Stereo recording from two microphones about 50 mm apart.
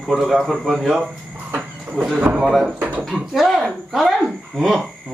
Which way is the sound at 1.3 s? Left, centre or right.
Right.